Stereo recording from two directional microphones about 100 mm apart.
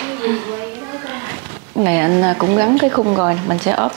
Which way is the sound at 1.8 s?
25° right (ahead or behind).